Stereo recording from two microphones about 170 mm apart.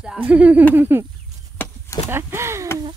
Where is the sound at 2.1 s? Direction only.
15° right (ahead or behind).